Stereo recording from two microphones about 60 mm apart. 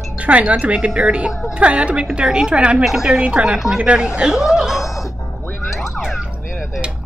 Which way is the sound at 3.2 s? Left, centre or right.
Centre.